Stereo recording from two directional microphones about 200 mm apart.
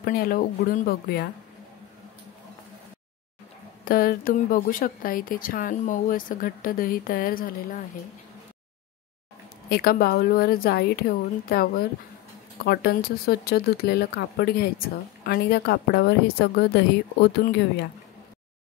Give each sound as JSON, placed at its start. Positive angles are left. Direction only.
{"t": 0.0, "sound": "a woman's voice", "side_deg": 45}
{"t": 3.8, "sound": "a woman's voice", "side_deg": 45}
{"t": 9.7, "sound": "a woman's voice", "side_deg": 50}